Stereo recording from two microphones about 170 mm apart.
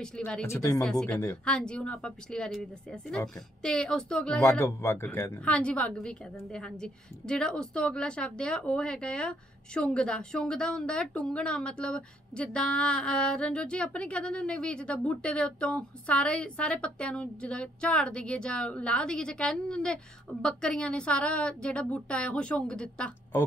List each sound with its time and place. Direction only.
0.0 s a woman's voice: 5° left (ahead or behind)
0.8 s a woman's voice: 5° left (ahead or behind)